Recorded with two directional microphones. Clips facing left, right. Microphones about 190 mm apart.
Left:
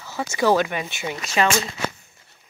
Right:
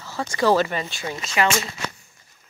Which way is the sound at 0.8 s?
20° left (ahead or behind).